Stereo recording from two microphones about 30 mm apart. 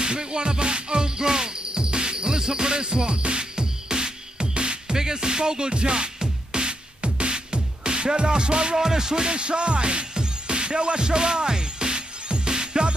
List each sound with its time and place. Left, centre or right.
0.0 s music: right
8.7 s music: centre